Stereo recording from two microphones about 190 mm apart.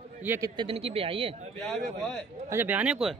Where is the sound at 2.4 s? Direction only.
10° right (ahead or behind).